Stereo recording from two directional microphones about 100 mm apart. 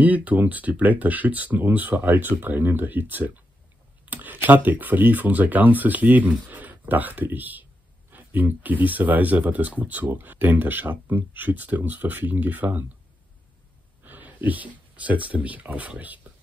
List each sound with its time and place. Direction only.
0.0 s speech: 15° right (ahead or behind)
14.0 s speech: 15° right (ahead or behind)